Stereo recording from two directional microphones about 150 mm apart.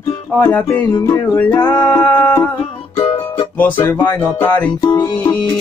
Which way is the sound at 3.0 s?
35° left (ahead or behind).